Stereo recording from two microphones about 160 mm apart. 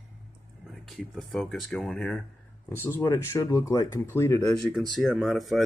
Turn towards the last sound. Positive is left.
turn(degrees=0)  # may be behind; listen again after turning